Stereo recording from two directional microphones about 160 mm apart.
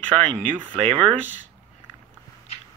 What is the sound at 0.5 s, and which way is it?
Speech, 10° right (ahead or behind).